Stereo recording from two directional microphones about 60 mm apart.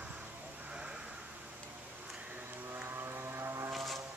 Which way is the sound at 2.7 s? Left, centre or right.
Right.